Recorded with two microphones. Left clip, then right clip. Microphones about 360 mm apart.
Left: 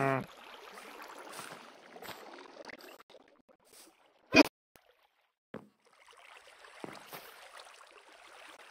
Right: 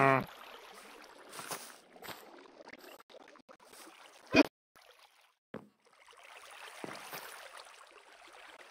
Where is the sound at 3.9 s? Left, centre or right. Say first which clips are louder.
Right 9 dB; right.